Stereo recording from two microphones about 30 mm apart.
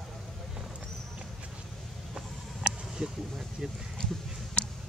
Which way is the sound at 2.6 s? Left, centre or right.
Right.